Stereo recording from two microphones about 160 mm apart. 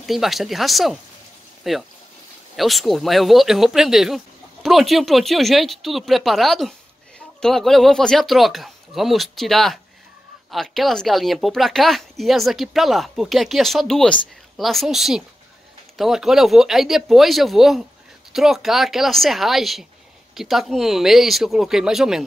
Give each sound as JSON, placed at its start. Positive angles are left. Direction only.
{"t": 0.0, "sound": "speech", "side_deg": 0}